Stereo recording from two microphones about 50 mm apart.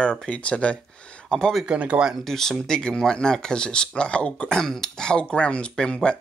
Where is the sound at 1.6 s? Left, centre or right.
Right.